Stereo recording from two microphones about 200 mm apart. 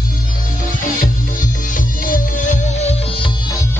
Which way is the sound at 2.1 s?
40° left (ahead or behind).